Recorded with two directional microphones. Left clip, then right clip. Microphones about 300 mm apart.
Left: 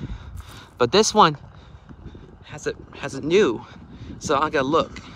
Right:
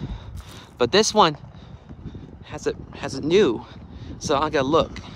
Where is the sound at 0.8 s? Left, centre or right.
Centre.